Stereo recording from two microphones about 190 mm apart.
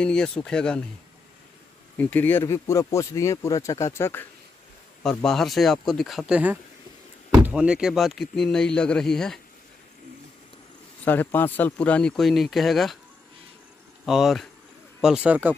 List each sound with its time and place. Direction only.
0.0 s speech: 5° left (ahead or behind)
2.0 s speech: 10° left (ahead or behind)
11.1 s speech: 10° left (ahead or behind)
14.0 s speech: centre (ahead or behind)